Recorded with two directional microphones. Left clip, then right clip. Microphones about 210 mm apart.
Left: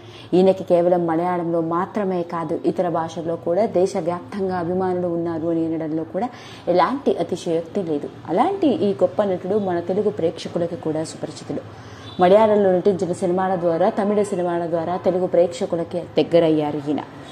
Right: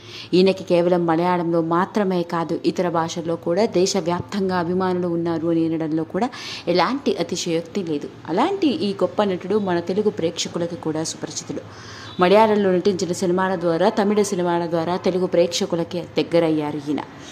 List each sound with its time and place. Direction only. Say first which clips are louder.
0.3 s a woman's voice: left 1 dB; centre (ahead or behind)
12.2 s a woman's voice: left 1 dB; centre (ahead or behind)
16.2 s a woman's voice: left 3 dB; 5° left (ahead or behind)